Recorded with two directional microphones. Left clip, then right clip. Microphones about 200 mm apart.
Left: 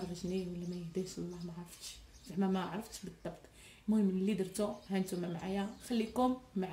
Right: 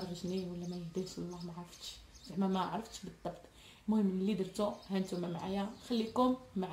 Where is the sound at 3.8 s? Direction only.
Centre (ahead or behind).